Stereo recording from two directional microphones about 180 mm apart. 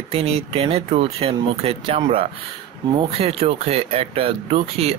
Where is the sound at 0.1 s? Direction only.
30° right (ahead or behind).